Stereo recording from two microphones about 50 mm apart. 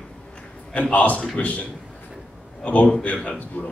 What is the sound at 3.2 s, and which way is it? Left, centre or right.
Speech, left.